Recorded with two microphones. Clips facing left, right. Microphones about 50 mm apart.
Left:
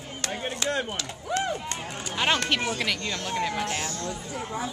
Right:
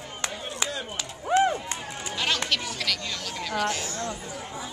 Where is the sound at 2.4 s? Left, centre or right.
Left.